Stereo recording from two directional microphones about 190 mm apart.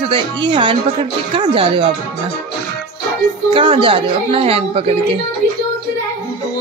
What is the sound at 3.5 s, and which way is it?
Speech, 25° right (ahead or behind).